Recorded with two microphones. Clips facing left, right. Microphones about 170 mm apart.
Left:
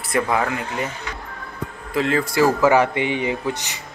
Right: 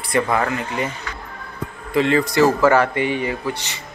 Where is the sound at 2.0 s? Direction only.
Centre (ahead or behind); by 3.5 s 20° left (ahead or behind).